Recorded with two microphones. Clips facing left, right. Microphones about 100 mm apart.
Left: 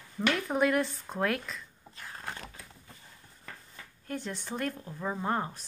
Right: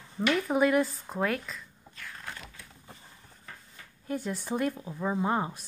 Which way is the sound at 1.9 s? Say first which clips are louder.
Left 1 dB; 35° left (ahead or behind).